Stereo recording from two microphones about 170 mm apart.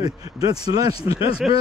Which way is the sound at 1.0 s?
35° left (ahead or behind).